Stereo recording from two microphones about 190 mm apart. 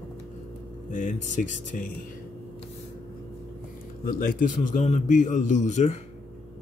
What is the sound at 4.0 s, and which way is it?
A man's voice, 50° left (ahead or behind).